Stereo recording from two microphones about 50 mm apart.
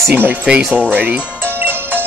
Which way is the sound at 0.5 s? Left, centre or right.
Centre.